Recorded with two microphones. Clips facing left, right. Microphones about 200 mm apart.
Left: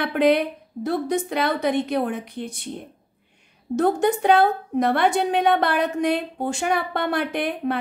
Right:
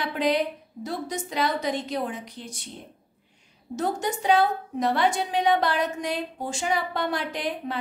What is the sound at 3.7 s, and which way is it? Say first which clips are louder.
A woman's voice: left 8 dB; 60° left (ahead or behind).